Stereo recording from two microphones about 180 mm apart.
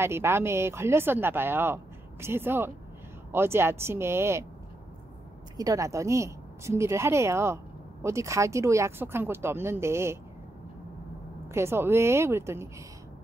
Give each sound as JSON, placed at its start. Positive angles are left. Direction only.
{"t": 0.0, "sound": "a woman's voice", "side_deg": -15}
{"t": 5.6, "sound": "a woman's voice", "side_deg": -20}
{"t": 11.5, "sound": "a woman's voice", "side_deg": -15}